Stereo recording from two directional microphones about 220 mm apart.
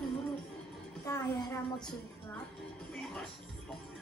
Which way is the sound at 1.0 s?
15° left (ahead or behind).